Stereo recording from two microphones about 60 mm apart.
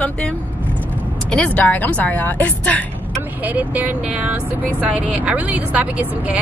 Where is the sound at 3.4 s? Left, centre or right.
Right.